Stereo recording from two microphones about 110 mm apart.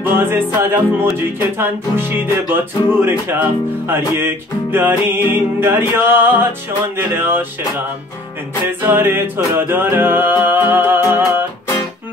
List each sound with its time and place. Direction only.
0.0 s music: 20° right (ahead or behind)
8.6 s music: 20° right (ahead or behind)